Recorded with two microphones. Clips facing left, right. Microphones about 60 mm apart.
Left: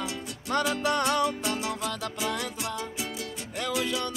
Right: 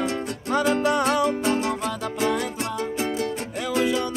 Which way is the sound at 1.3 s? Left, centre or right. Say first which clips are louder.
Right 7 dB; right.